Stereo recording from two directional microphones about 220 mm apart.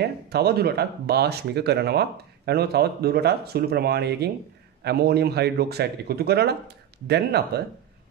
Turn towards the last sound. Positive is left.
turn(degrees=-50)  # may be behind; listen again after turning